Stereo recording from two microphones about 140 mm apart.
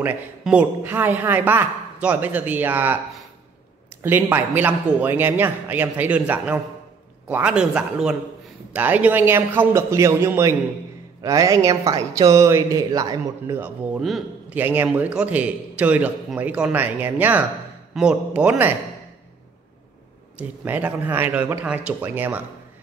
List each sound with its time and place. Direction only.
0.0 s a woman's voice: 10° right (ahead or behind)
4.0 s a woman's voice: 15° right (ahead or behind)
13.9 s a man's voice: centre (ahead or behind)
14.5 s a woman's voice: 15° right (ahead or behind)
20.3 s a woman's voice: 10° right (ahead or behind)